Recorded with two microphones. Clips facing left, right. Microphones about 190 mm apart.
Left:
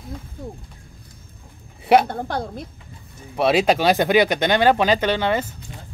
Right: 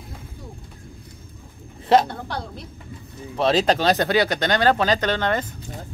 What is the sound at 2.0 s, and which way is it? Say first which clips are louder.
Speech: left 5 dB; 50° left (ahead or behind).